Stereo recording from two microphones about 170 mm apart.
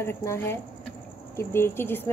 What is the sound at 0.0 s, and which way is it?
Speech, 15° left (ahead or behind).